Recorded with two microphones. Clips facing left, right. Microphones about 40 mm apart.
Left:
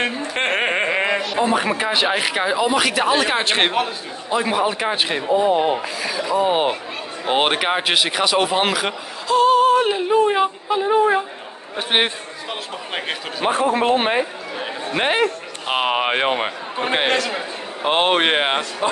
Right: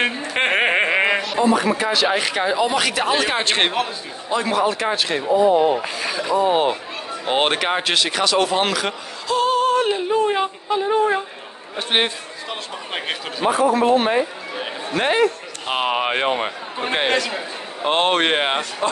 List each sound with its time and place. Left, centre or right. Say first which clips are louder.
0.0 s a sound: right 1 dB; centre
1.4 s speech: right 2 dB; left; by 13.2 s centre
13.5 s speech: right 1 dB; left; by 18.6 s centre